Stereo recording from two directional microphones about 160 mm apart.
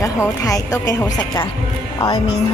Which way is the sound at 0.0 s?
20° left (ahead or behind).